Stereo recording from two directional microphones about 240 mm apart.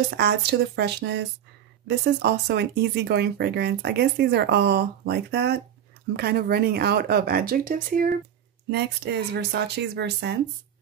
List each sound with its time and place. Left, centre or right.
0.2 s speech: right